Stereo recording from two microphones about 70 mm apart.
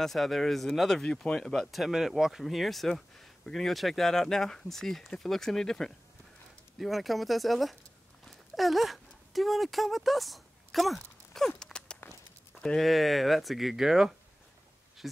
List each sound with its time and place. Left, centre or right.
0.0 s speech: centre
8.3 s a sound: centre
12.5 s speech: centre